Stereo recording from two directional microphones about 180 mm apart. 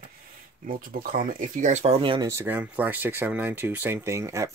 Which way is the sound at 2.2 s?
15° right (ahead or behind).